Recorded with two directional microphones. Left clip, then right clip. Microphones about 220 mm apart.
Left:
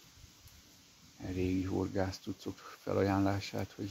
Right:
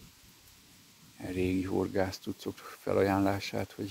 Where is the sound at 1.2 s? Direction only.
45° right (ahead or behind).